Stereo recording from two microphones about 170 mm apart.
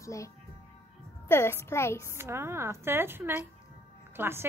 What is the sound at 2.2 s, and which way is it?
A woman's voice, 15° right (ahead or behind).